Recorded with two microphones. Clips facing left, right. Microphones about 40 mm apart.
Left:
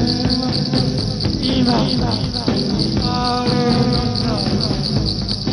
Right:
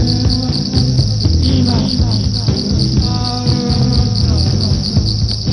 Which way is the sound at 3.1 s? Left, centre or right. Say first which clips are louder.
Left 1 dB; left.